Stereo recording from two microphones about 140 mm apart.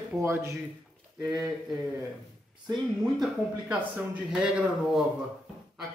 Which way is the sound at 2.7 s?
Centre (ahead or behind).